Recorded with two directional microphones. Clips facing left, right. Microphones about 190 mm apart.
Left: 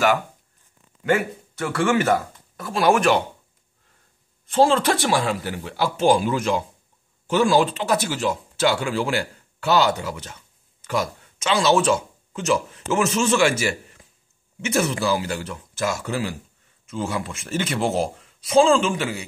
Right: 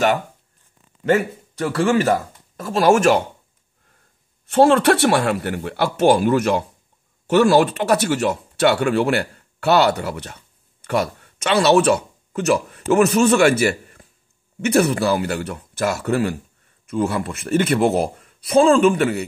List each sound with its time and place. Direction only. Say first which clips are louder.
1.5 s speech: right 3 dB; 35° right (ahead or behind)
4.5 s speech: right 4 dB; 65° right (ahead or behind)